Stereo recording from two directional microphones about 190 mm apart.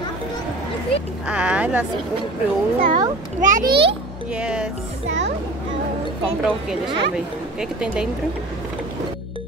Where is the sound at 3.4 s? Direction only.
45° right (ahead or behind).